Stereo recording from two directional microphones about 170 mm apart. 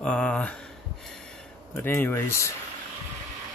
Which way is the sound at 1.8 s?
15° left (ahead or behind).